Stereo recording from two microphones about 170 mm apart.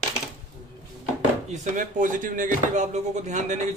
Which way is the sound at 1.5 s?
45° right (ahead or behind).